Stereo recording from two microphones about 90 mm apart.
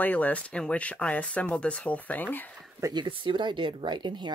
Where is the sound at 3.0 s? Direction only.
65° right (ahead or behind).